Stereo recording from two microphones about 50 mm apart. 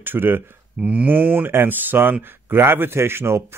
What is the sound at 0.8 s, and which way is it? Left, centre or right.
Speech, right.